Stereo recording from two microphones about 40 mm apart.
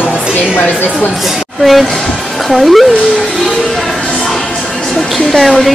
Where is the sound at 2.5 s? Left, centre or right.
Centre.